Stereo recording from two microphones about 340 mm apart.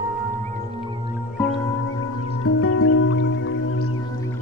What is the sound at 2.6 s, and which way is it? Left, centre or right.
Music, left.